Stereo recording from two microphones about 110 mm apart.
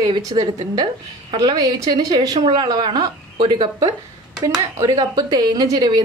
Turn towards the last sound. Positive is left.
turn(degrees=-35)  # may be behind; listen again after turning